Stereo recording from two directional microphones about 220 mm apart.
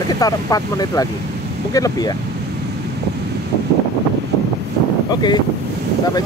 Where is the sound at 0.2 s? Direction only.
15° left (ahead or behind).